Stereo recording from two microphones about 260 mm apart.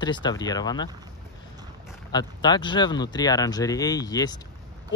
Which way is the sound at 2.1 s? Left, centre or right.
Centre.